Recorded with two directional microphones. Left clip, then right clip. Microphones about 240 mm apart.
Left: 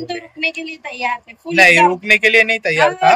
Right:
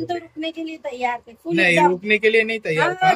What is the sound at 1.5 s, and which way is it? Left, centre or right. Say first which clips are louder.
Speech: left 6 dB; centre.